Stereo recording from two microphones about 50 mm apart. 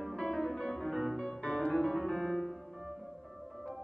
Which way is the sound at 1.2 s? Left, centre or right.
Centre.